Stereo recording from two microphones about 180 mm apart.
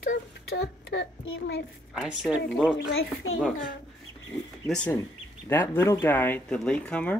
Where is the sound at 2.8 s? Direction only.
90° left.